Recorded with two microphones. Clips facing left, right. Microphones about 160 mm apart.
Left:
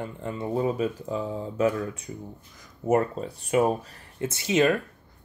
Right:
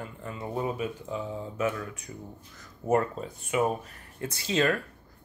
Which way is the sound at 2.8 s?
20° left (ahead or behind).